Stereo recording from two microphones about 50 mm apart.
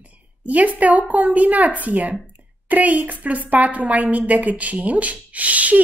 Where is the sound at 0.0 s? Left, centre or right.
Right.